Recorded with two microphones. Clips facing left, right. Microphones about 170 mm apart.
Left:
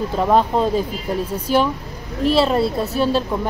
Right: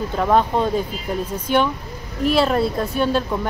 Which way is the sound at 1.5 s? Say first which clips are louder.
Left 1 dB; 35° left (ahead or behind).